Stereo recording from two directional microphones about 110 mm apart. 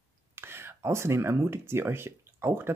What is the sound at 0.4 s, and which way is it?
Speech, 20° right (ahead or behind).